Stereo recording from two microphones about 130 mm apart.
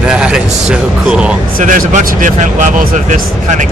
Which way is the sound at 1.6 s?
80° right.